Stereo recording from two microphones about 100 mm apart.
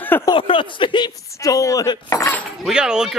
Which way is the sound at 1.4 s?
35° left (ahead or behind).